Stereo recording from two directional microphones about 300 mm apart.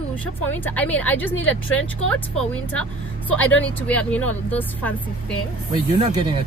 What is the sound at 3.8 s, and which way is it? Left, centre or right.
Speech, centre.